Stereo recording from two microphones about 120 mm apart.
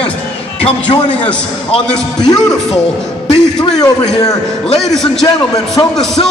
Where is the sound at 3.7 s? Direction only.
30° left (ahead or behind).